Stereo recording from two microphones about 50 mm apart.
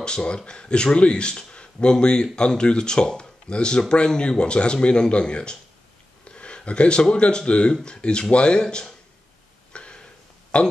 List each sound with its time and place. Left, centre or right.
0.0 s speech: centre
9.7 s a sound: left
10.5 s speech: centre